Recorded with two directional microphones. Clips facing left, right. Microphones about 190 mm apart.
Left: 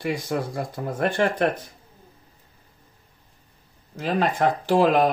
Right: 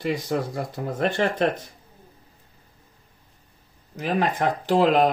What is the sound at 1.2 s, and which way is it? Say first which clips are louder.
Speech: left 2 dB; 25° right (ahead or behind).